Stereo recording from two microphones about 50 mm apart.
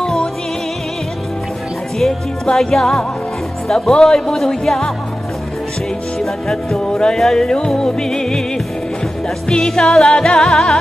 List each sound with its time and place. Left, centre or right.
0.0 s music: centre
2.6 s speech: centre
6.1 s speech: centre
7.2 s music: centre
7.4 s speech: centre
9.5 s speech: centre